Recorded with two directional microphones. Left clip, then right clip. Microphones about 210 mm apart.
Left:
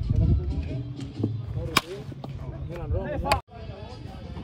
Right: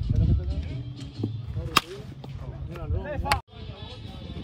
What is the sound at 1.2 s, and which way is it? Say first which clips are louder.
Speech: left 3 dB; 15° right (ahead or behind).